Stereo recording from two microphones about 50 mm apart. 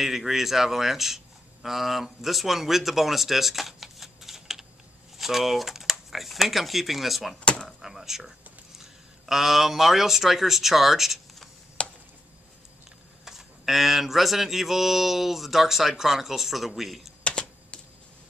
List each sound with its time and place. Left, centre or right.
0.0 s speech: centre
7.3 s speech: left
7.6 s speech: centre
11.8 s chop: left
13.2 s a sound: centre
17.2 s typing: centre